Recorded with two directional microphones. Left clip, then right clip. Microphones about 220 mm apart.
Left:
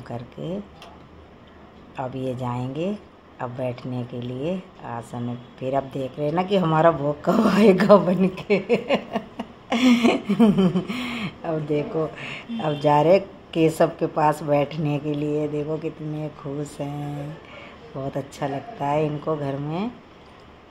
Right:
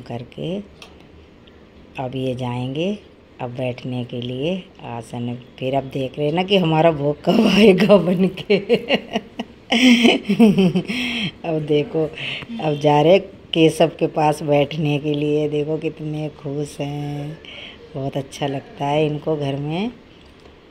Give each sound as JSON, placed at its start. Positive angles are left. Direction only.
{"t": 0.1, "sound": "a woman's voice", "side_deg": -25}
{"t": 2.3, "sound": "a woman's voice", "side_deg": -30}
{"t": 17.9, "sound": "a woman's voice", "side_deg": -30}